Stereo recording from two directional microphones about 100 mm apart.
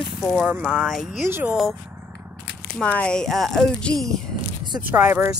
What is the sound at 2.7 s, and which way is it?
Speech, 10° left (ahead or behind).